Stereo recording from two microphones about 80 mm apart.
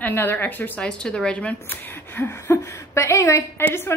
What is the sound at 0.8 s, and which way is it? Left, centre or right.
A woman's voice, centre.